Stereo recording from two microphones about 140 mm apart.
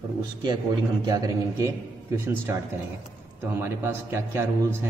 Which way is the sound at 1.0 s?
25° right (ahead or behind).